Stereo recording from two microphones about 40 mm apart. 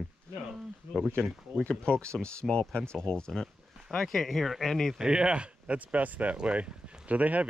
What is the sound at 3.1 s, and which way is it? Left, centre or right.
Speech, centre.